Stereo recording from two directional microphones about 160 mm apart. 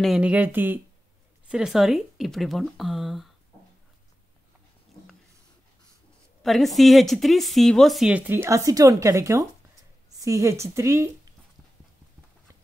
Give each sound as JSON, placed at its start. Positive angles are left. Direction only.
{"t": 0.0, "sound": "speech", "side_deg": -5}
{"t": 6.4, "sound": "speech", "side_deg": 0}